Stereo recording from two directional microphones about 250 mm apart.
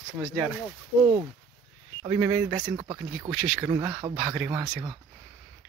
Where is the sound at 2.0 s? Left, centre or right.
Centre.